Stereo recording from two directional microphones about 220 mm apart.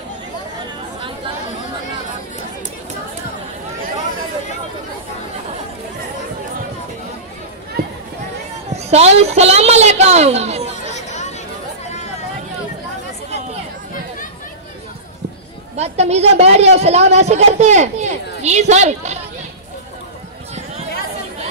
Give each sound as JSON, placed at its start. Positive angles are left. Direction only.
{"t": 8.7, "sound": "a woman's voice", "side_deg": -30}
{"t": 10.9, "sound": "chatter", "side_deg": 30}
{"t": 15.7, "sound": "a woman's voice", "side_deg": -30}